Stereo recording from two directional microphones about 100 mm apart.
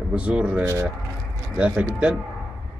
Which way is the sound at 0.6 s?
30° right (ahead or behind).